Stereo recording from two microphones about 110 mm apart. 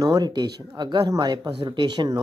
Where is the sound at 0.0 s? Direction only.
40° right (ahead or behind).